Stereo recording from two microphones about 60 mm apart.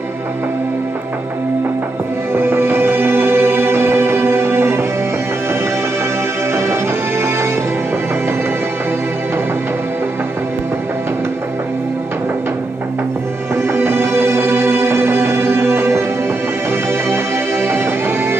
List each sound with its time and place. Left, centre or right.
2.3 s music: right
6.5 s music: right
13.6 s music: right
17.1 s music: right